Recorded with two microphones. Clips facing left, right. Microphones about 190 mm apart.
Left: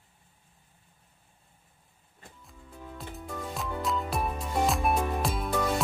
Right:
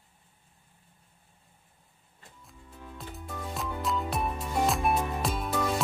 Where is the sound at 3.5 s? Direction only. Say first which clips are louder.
Even; centre (ahead or behind).